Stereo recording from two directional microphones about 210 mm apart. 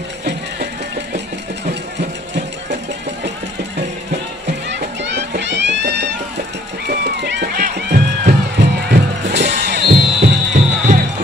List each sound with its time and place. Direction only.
0.2 s a sound: 50° right (ahead or behind)
4.6 s music: 55° right (ahead or behind)
6.9 s music: 45° right (ahead or behind)
10.2 s music: 35° right (ahead or behind)